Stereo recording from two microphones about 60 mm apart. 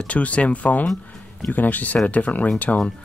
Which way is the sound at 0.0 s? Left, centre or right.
Left.